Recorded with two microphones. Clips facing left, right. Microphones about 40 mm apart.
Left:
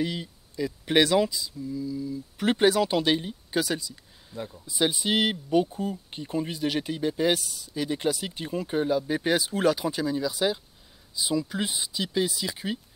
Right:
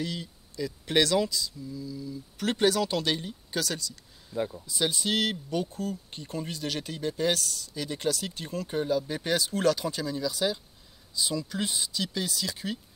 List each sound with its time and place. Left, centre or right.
0.0 s speech: centre
4.3 s speech: centre
4.6 s speech: centre